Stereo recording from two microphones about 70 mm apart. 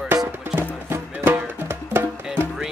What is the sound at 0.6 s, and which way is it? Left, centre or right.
Music, right.